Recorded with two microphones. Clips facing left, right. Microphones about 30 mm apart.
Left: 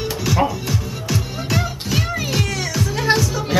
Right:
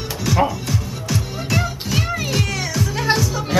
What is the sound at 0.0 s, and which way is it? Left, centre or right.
Music, centre.